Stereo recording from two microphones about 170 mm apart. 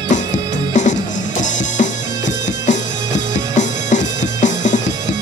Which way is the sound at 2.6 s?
45° left (ahead or behind).